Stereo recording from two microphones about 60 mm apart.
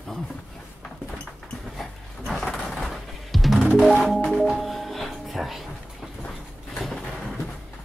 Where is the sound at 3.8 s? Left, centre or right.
Centre.